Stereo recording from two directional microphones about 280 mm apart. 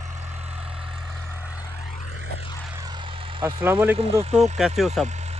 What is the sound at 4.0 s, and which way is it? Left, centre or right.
Speech, right.